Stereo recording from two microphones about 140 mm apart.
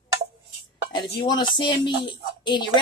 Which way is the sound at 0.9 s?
30° left (ahead or behind).